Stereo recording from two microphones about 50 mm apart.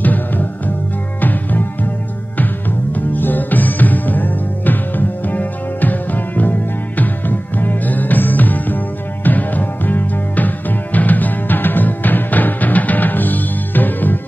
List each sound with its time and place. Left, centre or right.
0.0 s music: left
2.9 s music: left